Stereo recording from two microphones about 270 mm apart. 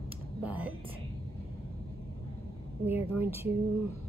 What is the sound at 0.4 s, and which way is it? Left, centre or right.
Whispering, centre.